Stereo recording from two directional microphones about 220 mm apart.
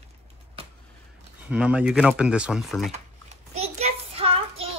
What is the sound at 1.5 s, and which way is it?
Speech, 5° right (ahead or behind).